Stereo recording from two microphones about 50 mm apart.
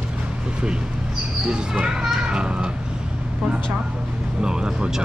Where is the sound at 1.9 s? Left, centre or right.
Centre.